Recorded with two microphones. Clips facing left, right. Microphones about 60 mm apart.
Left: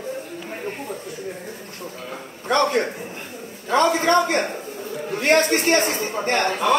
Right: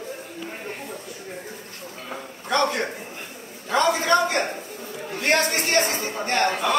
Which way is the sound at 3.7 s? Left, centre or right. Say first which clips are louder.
Left 2 dB; left.